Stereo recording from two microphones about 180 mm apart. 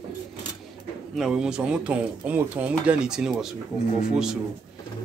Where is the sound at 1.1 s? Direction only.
Centre (ahead or behind).